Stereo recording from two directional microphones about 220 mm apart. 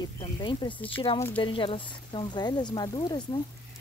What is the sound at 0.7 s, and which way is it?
Speech, 5° left (ahead or behind).